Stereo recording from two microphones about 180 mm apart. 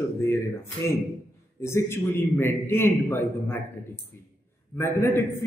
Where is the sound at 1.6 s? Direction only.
15° left (ahead or behind).